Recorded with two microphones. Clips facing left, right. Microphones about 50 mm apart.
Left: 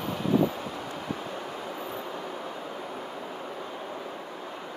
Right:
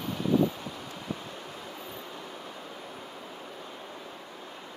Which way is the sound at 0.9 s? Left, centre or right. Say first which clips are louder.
Left 4 dB; centre.